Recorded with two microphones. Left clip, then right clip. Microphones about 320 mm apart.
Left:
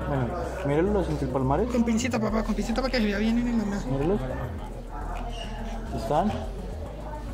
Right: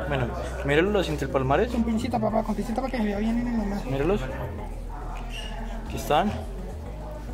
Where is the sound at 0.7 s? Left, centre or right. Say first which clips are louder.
Right 3 dB; right.